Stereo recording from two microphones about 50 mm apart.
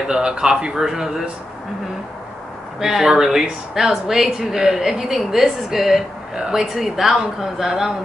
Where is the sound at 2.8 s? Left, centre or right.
Centre.